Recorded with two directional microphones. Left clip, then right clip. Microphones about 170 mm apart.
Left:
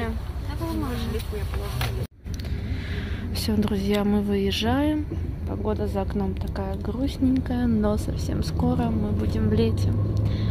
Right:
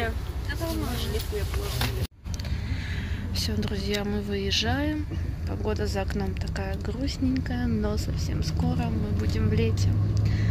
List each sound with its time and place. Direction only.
3.3 s speech: 30° left (ahead or behind)